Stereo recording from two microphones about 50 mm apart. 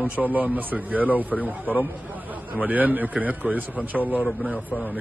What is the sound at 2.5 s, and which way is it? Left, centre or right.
A man's voice, right.